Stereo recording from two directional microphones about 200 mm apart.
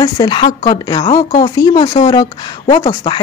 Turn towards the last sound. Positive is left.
turn(degrees=20)  # may be behind; listen again after turning